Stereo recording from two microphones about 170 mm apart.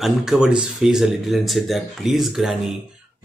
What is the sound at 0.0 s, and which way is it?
Speech, 5° right (ahead or behind).